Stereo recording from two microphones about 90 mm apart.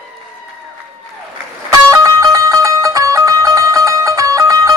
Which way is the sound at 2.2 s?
40° right (ahead or behind).